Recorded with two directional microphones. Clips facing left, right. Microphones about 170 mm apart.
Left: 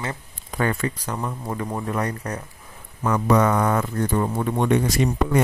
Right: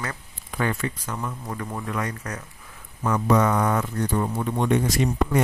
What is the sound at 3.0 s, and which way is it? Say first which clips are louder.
Speech: left 2 dB; 70° left (ahead or behind).